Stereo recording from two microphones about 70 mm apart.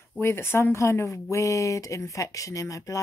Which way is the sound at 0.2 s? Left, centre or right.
Left.